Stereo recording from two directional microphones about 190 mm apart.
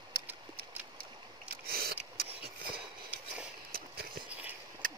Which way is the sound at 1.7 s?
55° right (ahead or behind).